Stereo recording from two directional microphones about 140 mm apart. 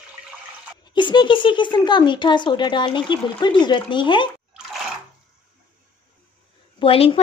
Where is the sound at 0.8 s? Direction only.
35° left (ahead or behind).